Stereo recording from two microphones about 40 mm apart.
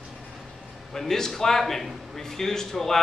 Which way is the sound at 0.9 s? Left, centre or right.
Centre.